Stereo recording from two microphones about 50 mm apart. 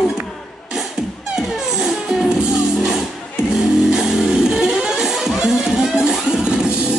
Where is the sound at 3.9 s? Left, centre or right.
Centre.